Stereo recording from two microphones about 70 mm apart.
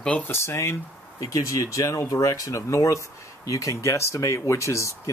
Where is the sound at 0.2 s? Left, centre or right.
Left.